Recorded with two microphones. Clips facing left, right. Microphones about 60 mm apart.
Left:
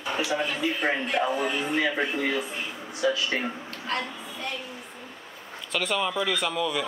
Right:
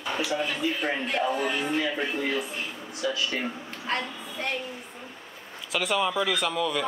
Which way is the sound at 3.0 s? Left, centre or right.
Left.